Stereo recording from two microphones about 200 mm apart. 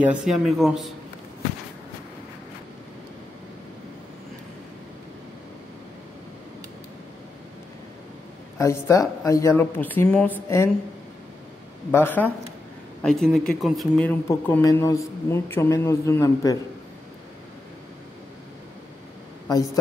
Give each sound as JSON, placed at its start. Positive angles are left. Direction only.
{"t": 0.0, "sound": "speech", "side_deg": -5}
{"t": 8.5, "sound": "speech", "side_deg": 15}
{"t": 11.9, "sound": "speech", "side_deg": 10}
{"t": 19.5, "sound": "speech", "side_deg": 15}